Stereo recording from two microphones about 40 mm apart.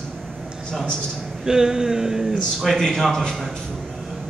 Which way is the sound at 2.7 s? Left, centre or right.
Centre.